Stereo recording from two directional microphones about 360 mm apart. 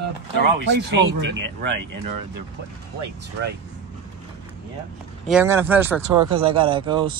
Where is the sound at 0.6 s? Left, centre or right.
Right.